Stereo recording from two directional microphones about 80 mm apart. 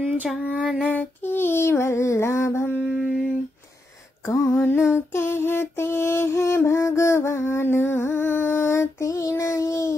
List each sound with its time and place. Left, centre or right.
0.4 s female singing: centre
0.8 s female singing: left
2.9 s a sound: centre
4.6 s music: left